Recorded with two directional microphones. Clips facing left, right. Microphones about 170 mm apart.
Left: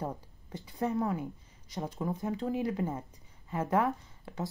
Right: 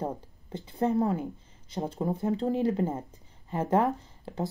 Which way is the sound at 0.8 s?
35° right (ahead or behind).